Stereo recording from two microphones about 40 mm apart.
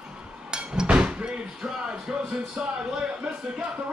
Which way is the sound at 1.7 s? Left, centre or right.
Right.